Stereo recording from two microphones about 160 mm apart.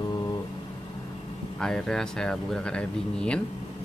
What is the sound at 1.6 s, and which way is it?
Speech, 5° left (ahead or behind).